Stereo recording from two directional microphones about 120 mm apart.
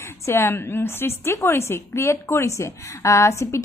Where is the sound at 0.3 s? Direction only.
20° left (ahead or behind).